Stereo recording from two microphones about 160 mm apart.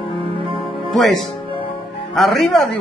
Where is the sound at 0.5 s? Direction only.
Centre (ahead or behind).